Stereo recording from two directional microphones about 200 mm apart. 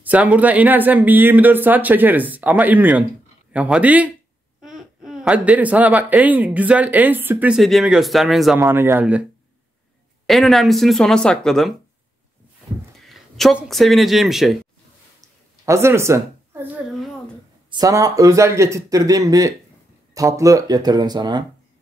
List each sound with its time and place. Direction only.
0.0 s speech: 5° right (ahead or behind)
8.5 s speech: 10° right (ahead or behind)
10.2 s speech: centre (ahead or behind)
13.0 s speech: centre (ahead or behind)
15.1 s a sound: 15° right (ahead or behind)
17.6 s speech: 20° right (ahead or behind)